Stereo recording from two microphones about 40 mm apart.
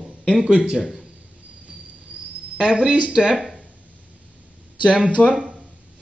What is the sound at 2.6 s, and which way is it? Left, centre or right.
Speech, right.